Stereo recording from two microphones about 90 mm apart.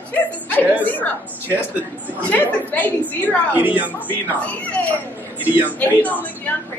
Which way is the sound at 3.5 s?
20° right (ahead or behind).